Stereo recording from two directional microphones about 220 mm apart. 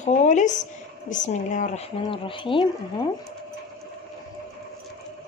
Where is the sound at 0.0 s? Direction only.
35° left (ahead or behind).